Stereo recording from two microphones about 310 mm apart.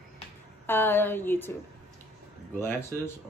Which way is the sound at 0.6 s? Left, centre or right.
Centre.